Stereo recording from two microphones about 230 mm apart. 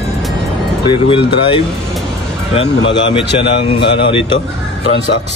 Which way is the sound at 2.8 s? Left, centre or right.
Left.